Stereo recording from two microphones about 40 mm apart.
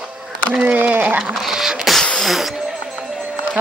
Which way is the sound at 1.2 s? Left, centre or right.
Centre.